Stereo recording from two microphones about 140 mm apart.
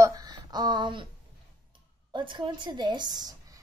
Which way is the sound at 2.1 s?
35° right (ahead or behind).